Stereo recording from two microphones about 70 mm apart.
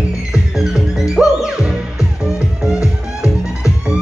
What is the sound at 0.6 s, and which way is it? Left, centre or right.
Music, centre.